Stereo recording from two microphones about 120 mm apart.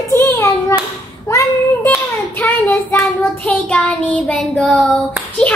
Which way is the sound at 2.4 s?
15° left (ahead or behind).